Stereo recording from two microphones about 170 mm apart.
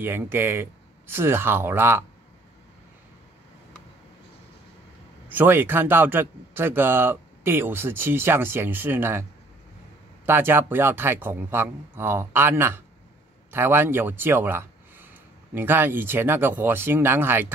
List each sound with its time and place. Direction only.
0.0 s speech: 15° right (ahead or behind)
5.3 s speech: 10° right (ahead or behind)
10.2 s speech: 10° right (ahead or behind)